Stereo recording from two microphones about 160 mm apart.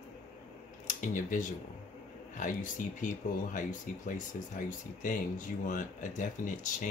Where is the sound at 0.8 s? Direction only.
50° left (ahead or behind).